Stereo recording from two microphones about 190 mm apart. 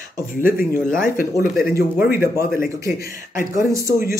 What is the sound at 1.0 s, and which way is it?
Speech, 45° left (ahead or behind).